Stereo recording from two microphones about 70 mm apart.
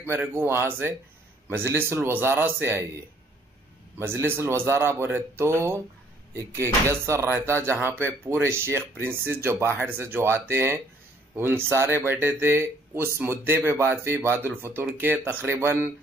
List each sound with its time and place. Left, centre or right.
0.1 s speech: right
4.0 s speech: right